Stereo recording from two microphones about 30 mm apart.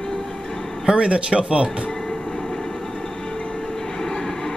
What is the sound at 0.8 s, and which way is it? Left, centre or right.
Speech, right.